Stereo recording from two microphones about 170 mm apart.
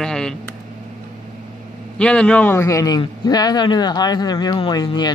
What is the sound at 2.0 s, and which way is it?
A man's voice, 5° left (ahead or behind).